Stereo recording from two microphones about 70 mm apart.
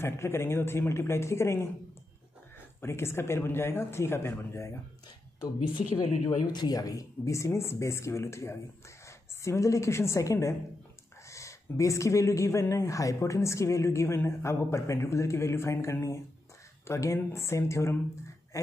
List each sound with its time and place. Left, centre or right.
0.0 s speech: left
2.8 s speech: left
6.2 s speech: left